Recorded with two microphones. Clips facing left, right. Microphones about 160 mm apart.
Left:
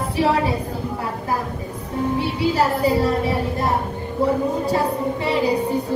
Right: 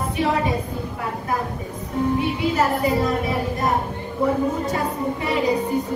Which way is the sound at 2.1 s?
35° left (ahead or behind).